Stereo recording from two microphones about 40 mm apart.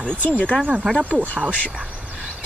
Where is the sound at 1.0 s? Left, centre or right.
Right.